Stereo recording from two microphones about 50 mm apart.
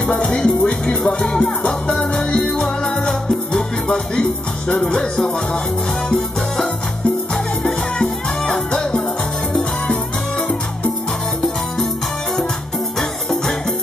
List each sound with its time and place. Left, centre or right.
0.1 s music: centre
1.4 s music: centre